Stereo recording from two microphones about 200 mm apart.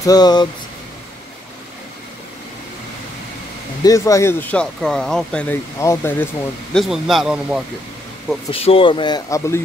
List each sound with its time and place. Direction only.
0.0 s speech: 20° left (ahead or behind)
3.8 s speech: 15° left (ahead or behind)
6.7 s speech: centre (ahead or behind)
8.5 s speech: 30° left (ahead or behind)